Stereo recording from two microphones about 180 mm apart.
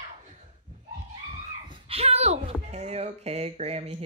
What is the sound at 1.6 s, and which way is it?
Speech, 30° right (ahead or behind).